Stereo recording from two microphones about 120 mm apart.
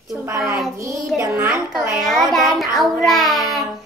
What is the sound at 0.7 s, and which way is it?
Child singing, 25° right (ahead or behind).